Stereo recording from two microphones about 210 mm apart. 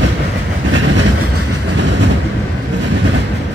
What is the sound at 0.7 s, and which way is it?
Train, 60° right (ahead or behind).